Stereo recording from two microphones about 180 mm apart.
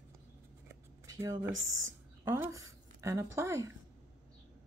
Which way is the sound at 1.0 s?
15° right (ahead or behind).